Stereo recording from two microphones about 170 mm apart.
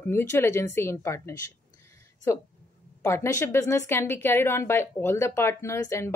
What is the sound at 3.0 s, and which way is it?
Speech, 15° left (ahead or behind).